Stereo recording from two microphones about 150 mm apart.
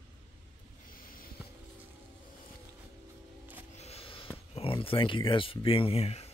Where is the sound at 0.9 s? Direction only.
70° left (ahead or behind).